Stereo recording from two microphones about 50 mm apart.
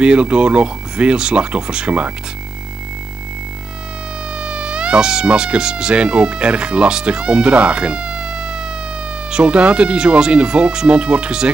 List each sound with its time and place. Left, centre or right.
0.0 s speech: right
4.4 s speech: centre